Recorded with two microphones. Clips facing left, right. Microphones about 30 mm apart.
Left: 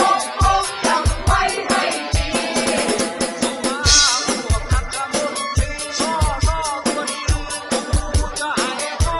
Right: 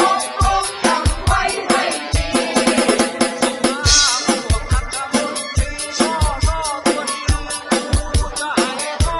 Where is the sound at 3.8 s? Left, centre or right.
Centre.